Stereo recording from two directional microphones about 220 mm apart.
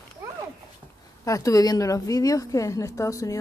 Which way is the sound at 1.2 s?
15° left (ahead or behind).